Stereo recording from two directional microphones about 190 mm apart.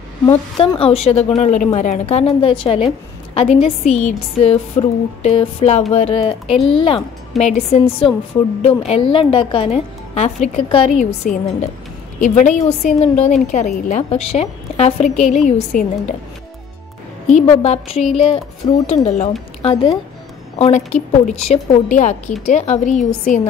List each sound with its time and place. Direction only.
0.3 s a woman's voice: 25° left (ahead or behind)
6.4 s speech: centre (ahead or behind)
6.7 s a woman's voice: 30° left (ahead or behind)
11.3 s a woman's voice: 45° left (ahead or behind)
17.3 s a woman's voice: 35° left (ahead or behind)
19.0 s a woman's voice: 40° left (ahead or behind)
19.6 s a woman's voice: 25° left (ahead or behind)